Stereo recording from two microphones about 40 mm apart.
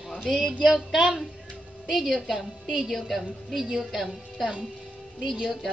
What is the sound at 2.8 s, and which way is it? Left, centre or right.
A woman's voice, centre.